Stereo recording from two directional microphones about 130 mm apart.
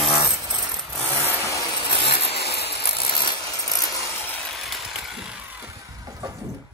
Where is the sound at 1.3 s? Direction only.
25° left (ahead or behind).